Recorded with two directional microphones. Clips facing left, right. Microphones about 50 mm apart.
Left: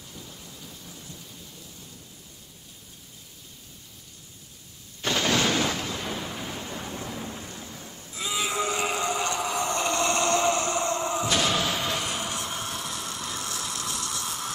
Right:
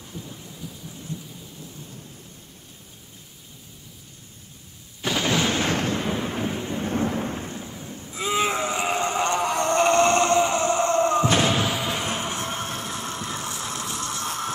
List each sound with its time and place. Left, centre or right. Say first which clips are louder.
0.1 s thunder: right 6 dB; centre
5.0 s a sound: right 1 dB; centre
5.7 s a sound: right 6 dB; right
6.0 s thunder: right 7 dB; right
6.9 s thunder: right 10 dB; right
7.6 s thunder: right 5 dB; centre
8.3 s music: right 4 dB; right
10.3 s a sound: right 4 dB; right
10.8 s music: right 7 dB; right
11.3 s slam: right 3 dB; right
11.7 s music: right 2 dB; centre
12.0 s vehicle: right 3 dB; right